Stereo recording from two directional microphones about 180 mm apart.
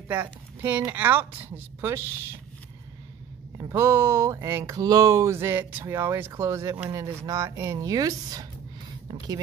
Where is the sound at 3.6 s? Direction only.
15° right (ahead or behind).